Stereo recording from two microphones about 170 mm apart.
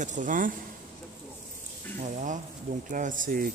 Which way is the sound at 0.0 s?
50° right (ahead or behind).